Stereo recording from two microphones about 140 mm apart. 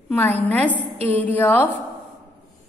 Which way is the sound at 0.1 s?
10° left (ahead or behind).